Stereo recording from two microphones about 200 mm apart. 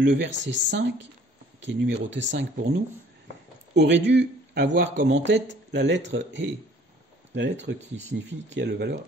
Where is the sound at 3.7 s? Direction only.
60° right (ahead or behind).